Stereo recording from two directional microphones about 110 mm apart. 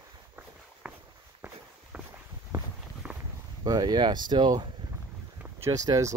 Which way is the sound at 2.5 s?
30° right (ahead or behind).